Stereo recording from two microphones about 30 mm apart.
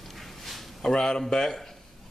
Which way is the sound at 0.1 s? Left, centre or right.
Centre.